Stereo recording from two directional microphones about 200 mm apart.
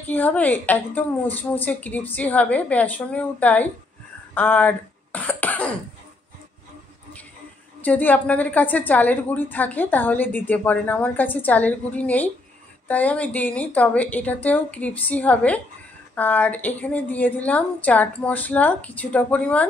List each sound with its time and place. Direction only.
0.0 s a woman's voice: 10° left (ahead or behind)
4.3 s cough: 10° left (ahead or behind)
7.8 s a woman's voice: 10° left (ahead or behind)